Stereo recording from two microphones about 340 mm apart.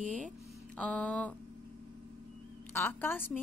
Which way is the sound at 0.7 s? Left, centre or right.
Centre.